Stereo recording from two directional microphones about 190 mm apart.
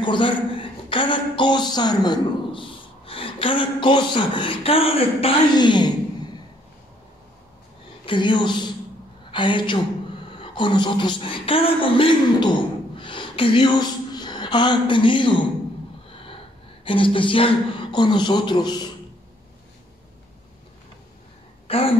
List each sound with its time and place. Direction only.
0.0 s a woman's voice: 25° left (ahead or behind)
8.0 s a woman's voice: 25° left (ahead or behind)
16.8 s speech: 25° left (ahead or behind)
21.6 s speech: 30° left (ahead or behind)